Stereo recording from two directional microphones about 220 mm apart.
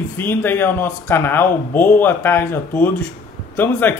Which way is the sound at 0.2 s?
10° left (ahead or behind).